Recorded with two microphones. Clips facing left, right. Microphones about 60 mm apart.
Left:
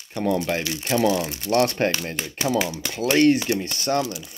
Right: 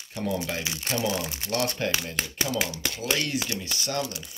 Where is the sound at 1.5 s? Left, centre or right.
Left.